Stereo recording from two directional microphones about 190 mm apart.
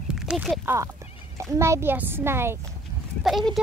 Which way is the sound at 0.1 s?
5° right (ahead or behind).